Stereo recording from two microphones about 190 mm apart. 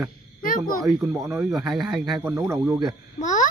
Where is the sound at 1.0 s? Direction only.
15° right (ahead or behind).